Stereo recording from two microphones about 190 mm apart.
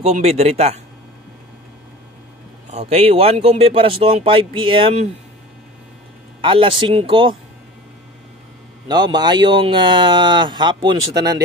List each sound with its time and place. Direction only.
0.0 s speech: 35° right (ahead or behind)
2.7 s speech: 35° right (ahead or behind)
6.4 s speech: 25° right (ahead or behind)
8.8 s speech: 20° right (ahead or behind)